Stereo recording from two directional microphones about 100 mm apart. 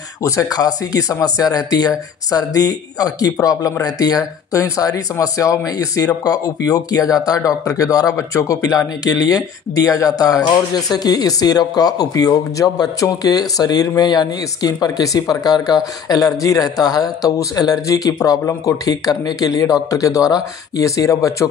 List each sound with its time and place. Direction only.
0.2 s speech: 35° left (ahead or behind)